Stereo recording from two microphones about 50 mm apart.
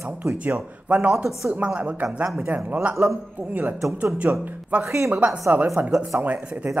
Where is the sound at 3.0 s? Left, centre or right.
Right.